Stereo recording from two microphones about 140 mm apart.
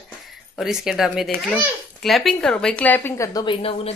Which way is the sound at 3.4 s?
45° left (ahead or behind).